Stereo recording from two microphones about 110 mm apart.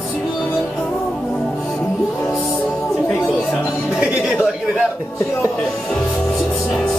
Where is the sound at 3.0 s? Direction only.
25° left (ahead or behind).